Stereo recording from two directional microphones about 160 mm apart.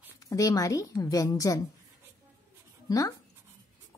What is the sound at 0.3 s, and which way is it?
A woman's voice, 20° left (ahead or behind).